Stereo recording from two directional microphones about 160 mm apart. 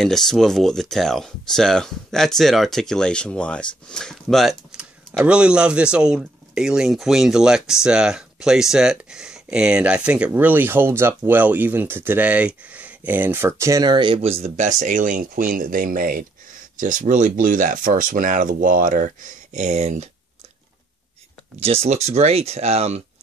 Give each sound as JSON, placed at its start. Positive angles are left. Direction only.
{"t": 0.0, "sound": "speech", "side_deg": 5}
{"t": 21.5, "sound": "speech", "side_deg": -40}